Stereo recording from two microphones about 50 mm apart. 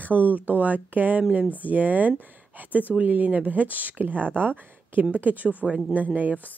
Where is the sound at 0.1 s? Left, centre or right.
Right.